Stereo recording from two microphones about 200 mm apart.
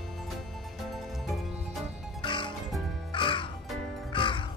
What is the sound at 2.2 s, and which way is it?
Music, 25° left (ahead or behind).